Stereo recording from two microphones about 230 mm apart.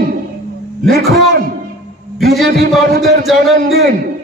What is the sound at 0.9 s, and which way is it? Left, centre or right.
Speech, right.